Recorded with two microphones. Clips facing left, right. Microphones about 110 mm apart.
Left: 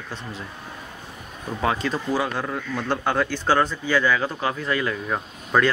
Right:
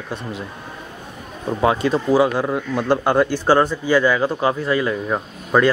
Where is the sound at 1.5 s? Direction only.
20° right (ahead or behind).